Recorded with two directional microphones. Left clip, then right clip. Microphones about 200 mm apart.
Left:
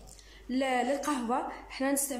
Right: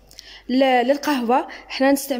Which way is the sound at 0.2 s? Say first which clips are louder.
Right 14 dB; 45° right (ahead or behind).